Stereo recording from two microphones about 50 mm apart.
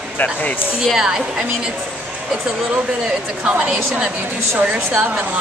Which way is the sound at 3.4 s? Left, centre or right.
Right.